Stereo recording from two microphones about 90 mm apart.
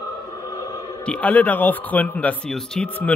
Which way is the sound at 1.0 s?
15° left (ahead or behind).